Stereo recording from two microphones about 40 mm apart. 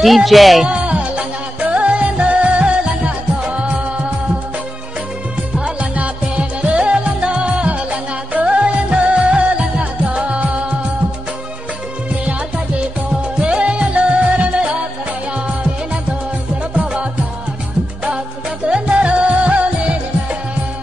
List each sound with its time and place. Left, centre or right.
0.0 s speech: centre
0.7 s music: right
5.6 s music: right
13.4 s music: right
16.7 s music: right
18.7 s music: right